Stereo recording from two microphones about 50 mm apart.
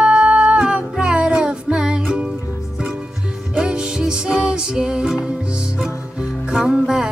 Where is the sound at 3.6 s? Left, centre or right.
Centre.